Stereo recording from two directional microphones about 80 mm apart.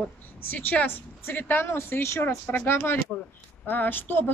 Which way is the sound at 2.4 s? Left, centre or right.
Left.